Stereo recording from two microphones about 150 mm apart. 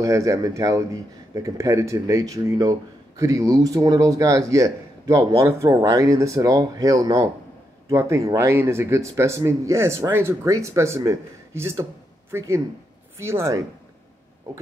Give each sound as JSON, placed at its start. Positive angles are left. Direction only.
{"t": 0.0, "sound": "speech", "side_deg": -20}